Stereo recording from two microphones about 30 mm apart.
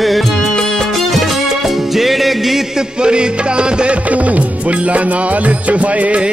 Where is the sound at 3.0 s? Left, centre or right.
Right.